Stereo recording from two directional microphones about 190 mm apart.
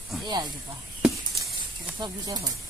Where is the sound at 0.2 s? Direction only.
20° right (ahead or behind).